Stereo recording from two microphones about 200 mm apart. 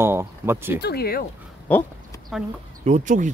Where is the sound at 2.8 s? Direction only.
35° right (ahead or behind).